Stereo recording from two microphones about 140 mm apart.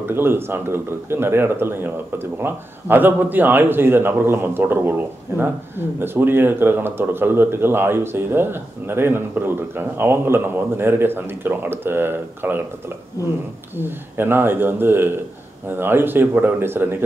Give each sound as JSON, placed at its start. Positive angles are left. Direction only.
{"t": 0.1, "sound": "speech", "side_deg": -15}
{"t": 13.7, "sound": "speech", "side_deg": -15}